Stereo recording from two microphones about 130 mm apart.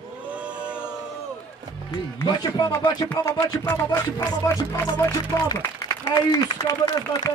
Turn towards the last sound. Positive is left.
turn(degrees=25)  # may be behind; listen again after turning